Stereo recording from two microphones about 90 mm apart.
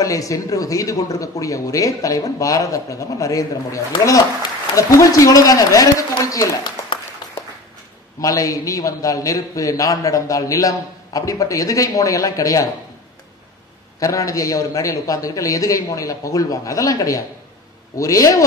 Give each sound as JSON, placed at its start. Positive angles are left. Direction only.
{"t": 0.0, "sound": "a man's voice", "side_deg": 40}
{"t": 8.2, "sound": "a man's voice", "side_deg": 40}
{"t": 13.9, "sound": "a man's voice", "side_deg": 40}